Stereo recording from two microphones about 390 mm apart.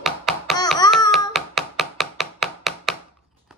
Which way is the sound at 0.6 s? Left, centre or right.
Centre.